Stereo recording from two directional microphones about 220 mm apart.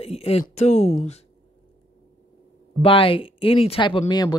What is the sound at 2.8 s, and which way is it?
Speech, 25° left (ahead or behind).